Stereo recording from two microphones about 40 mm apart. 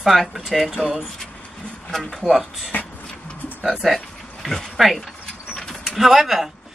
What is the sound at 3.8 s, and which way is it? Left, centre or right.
A man's voice, centre.